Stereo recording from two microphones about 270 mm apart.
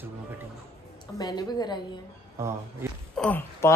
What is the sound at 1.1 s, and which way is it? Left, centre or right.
Speech, centre.